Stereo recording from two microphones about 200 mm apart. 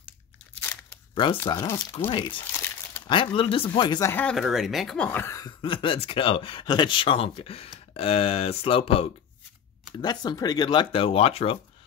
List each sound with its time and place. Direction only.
1.1 s speech: 25° left (ahead or behind)
1.4 s speech: 15° left (ahead or behind)
2.0 s speech: 25° left (ahead or behind)
2.5 s crumpling: 10° left (ahead or behind)
3.1 s speech: 25° left (ahead or behind)
4.1 s speech: 5° left (ahead or behind)
5.6 s speech: 25° left (ahead or behind)